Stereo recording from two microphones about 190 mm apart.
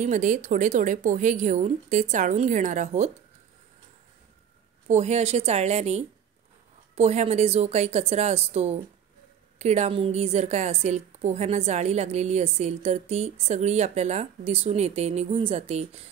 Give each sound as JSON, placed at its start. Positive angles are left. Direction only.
{"t": 0.0, "sound": "a woman's voice", "side_deg": -40}
{"t": 4.8, "sound": "a woman's voice", "side_deg": -35}